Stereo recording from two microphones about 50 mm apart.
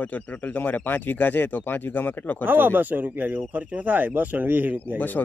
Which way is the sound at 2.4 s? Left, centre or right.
Right.